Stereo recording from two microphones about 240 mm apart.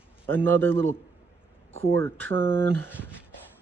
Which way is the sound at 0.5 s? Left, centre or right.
Centre.